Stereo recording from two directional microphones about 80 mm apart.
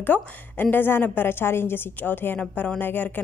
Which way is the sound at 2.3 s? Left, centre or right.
Centre.